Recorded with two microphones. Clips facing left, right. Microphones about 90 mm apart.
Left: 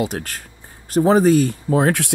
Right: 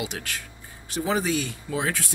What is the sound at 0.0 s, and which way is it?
Speech, 45° left (ahead or behind).